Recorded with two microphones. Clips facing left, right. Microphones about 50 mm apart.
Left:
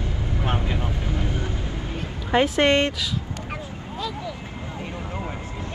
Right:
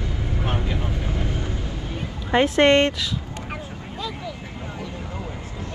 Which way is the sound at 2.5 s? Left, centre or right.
Centre.